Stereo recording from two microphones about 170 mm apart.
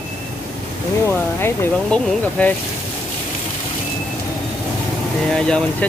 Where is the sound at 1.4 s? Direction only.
10° left (ahead or behind).